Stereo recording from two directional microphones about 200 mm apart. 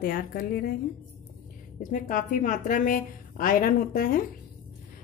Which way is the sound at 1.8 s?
40° left (ahead or behind).